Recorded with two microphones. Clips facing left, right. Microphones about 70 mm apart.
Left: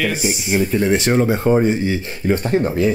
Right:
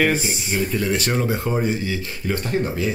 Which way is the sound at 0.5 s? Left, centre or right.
Left.